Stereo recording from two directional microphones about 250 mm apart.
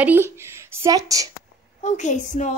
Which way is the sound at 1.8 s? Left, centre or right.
Left.